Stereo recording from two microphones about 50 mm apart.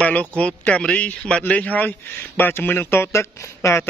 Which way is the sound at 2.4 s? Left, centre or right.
Left.